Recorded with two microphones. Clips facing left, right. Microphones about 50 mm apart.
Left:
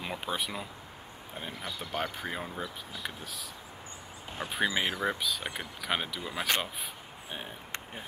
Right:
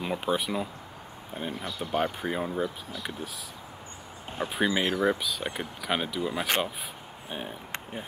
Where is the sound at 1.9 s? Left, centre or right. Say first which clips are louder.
Right 7 dB; centre.